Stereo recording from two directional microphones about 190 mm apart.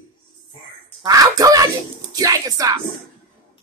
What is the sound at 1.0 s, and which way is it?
Speech, 20° right (ahead or behind).